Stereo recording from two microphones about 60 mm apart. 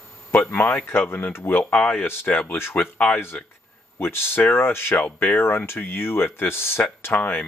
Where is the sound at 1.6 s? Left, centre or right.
Centre.